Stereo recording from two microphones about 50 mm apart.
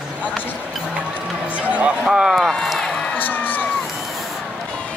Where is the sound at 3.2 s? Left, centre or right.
Left.